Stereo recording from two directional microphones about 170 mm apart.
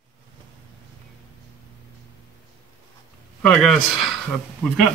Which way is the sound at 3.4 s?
Centre (ahead or behind).